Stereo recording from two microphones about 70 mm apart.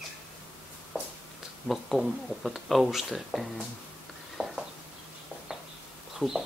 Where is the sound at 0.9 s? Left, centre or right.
Right.